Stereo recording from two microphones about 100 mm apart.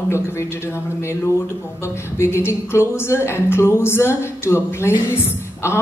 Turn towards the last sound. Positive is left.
turn(degrees=25)  # may be behind; listen again after turning